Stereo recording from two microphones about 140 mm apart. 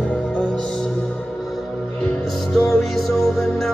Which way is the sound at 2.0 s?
Centre (ahead or behind).